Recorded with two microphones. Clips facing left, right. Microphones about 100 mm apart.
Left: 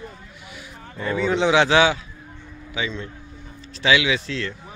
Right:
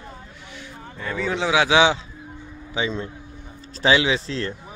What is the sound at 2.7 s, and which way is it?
A man's voice, 30° right (ahead or behind).